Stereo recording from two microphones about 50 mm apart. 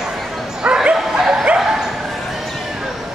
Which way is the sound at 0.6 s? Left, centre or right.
Right.